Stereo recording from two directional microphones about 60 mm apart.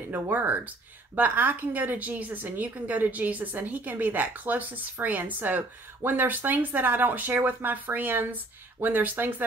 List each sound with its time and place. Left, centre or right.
0.1 s a woman's voice: right